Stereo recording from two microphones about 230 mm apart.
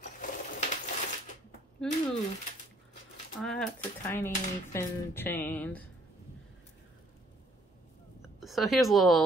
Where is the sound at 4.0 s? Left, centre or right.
Centre.